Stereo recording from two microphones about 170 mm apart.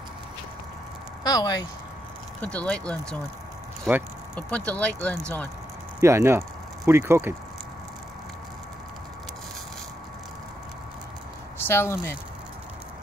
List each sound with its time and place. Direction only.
1.2 s speech: 20° left (ahead or behind)
2.4 s speech: 5° left (ahead or behind)
4.4 s speech: 10° left (ahead or behind)
5.9 s speech: 15° right (ahead or behind)
11.5 s speech: 15° left (ahead or behind)